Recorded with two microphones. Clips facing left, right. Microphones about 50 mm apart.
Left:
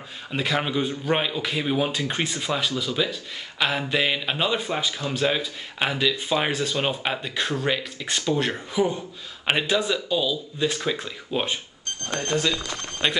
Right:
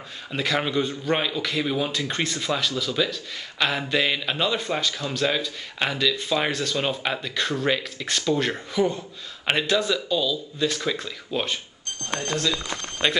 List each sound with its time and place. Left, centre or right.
0.3 s a man's voice: centre
13.0 s speech: centre